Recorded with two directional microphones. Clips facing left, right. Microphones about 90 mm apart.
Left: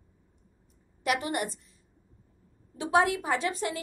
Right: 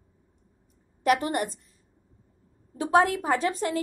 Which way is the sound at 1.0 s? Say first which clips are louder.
Right 5 dB; 40° right (ahead or behind).